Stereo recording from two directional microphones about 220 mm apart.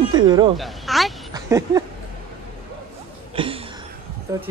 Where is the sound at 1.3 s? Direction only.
15° right (ahead or behind).